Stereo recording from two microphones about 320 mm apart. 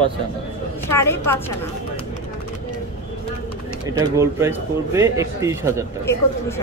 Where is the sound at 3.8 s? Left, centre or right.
Centre.